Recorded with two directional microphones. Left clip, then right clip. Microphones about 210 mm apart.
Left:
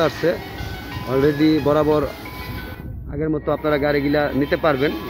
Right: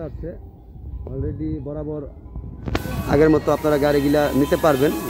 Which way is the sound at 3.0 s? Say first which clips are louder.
Right 6 dB; 10° right (ahead or behind).